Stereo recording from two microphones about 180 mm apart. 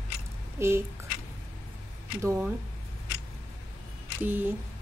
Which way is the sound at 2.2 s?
15° right (ahead or behind).